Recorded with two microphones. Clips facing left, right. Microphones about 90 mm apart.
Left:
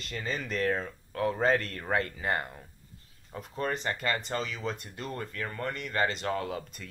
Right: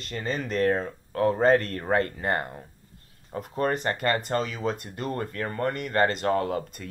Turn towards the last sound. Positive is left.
turn(degrees=-50)  # may be behind; listen again after turning